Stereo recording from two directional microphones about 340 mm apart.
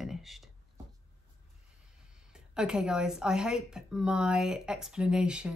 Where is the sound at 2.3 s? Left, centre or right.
Centre.